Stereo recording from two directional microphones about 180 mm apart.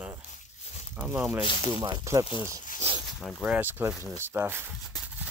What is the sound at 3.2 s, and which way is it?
Speech, centre (ahead or behind).